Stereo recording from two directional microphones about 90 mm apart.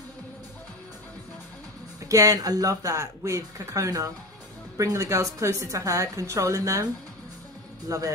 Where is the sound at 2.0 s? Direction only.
40° right (ahead or behind).